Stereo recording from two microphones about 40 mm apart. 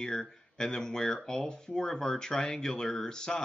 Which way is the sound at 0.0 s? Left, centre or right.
Centre.